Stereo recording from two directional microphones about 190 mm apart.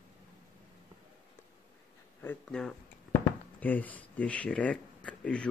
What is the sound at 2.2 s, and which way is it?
Speech, 5° left (ahead or behind).